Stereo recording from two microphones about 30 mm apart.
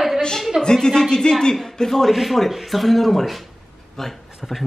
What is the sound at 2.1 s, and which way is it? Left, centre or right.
Speech, centre.